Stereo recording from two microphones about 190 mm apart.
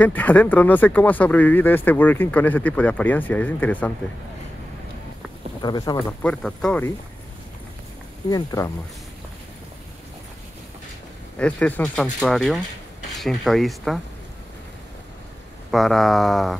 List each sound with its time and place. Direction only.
0.0 s speech: 10° left (ahead or behind)
5.6 s speech: 20° left (ahead or behind)
6.2 s speech: 5° left (ahead or behind)
8.3 s speech: 20° left (ahead or behind)
11.3 s speech: 5° left (ahead or behind)
15.7 s speech: centre (ahead or behind)